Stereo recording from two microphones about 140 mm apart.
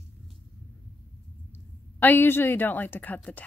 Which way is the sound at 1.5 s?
15° left (ahead or behind).